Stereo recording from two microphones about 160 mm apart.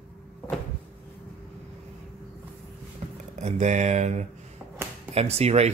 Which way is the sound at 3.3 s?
45° right (ahead or behind).